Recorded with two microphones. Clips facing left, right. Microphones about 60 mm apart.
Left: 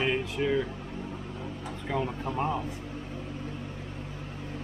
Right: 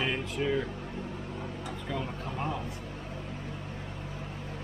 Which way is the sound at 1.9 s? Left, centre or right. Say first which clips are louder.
Left 6 dB; left.